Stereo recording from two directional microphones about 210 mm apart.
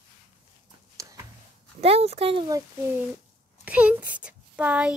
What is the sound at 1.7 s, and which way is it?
Speech, 30° right (ahead or behind).